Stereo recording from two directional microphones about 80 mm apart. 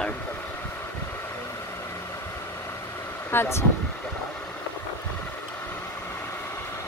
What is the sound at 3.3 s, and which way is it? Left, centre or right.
Speech, left.